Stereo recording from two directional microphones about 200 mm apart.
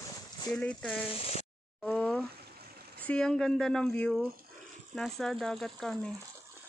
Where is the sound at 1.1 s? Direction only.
30° left (ahead or behind).